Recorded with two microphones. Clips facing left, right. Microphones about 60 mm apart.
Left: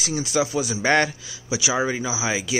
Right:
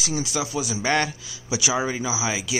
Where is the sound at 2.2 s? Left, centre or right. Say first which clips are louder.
Left 2 dB; left.